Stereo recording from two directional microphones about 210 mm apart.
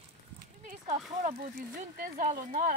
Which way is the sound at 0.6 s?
35° right (ahead or behind).